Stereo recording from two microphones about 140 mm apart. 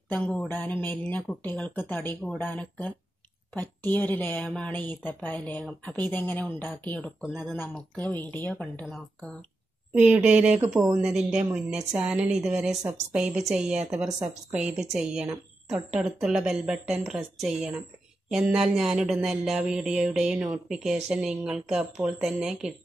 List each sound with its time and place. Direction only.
0.1 s speech: 10° left (ahead or behind)
9.9 s speech: 10° right (ahead or behind)
10.6 s speech: 20° right (ahead or behind)
11.0 s a woman's voice: 5° right (ahead or behind)
14.6 s a woman's voice: 55° right (ahead or behind)
14.9 s a woman's voice: 5° right (ahead or behind)